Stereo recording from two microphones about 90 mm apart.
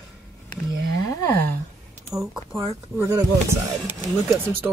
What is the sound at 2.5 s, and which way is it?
Speech, 30° right (ahead or behind).